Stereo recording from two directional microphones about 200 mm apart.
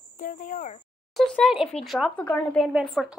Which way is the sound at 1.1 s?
5° left (ahead or behind).